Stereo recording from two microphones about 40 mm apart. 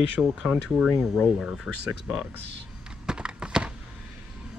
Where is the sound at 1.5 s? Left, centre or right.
Centre.